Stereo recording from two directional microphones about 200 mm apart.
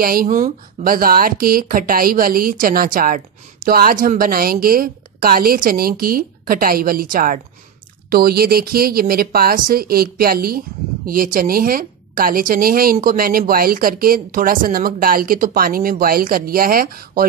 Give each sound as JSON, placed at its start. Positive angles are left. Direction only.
{"t": 0.0, "sound": "a woman's voice", "side_deg": -45}